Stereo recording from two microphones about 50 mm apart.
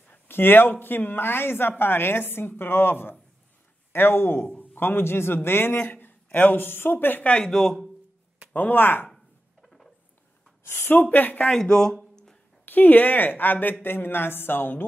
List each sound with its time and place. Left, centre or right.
0.1 s speech: left
5.8 s a man's voice: left
7.4 s speech: centre
8.5 s speech: left
9.1 s a sound: centre
10.6 s speech: left
11.4 s speech: centre
12.6 s speech: left